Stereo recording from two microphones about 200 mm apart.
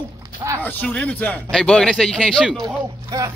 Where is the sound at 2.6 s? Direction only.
15° right (ahead or behind).